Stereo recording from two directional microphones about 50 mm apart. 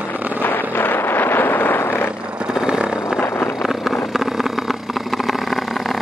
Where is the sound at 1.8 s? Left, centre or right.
Left.